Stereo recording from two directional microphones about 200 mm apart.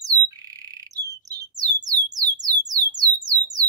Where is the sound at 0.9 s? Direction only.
20° right (ahead or behind).